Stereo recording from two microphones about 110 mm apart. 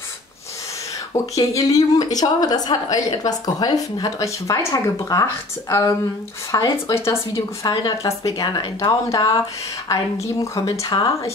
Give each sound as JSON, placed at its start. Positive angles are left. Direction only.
{"t": 1.1, "sound": "a woman's voice", "side_deg": 30}